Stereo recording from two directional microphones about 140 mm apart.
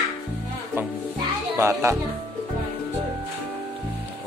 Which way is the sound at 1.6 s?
20° right (ahead or behind).